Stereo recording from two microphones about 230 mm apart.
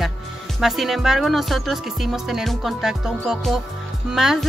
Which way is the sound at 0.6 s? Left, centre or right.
Centre.